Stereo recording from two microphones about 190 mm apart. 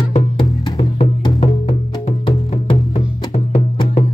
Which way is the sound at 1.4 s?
35° left (ahead or behind).